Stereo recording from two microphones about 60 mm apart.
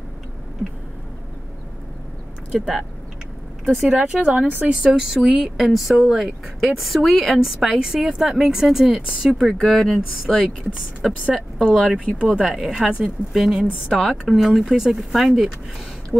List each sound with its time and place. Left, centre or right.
2.5 s speech: centre
3.6 s a woman's voice: centre
4.0 s a woman's voice: centre
9.5 s a woman's voice: centre